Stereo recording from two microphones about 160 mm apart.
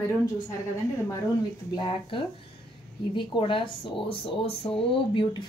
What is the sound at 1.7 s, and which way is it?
Speech, 30° left (ahead or behind).